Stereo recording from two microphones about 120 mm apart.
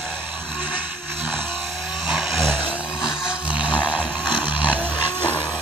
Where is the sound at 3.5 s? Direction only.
45° left (ahead or behind).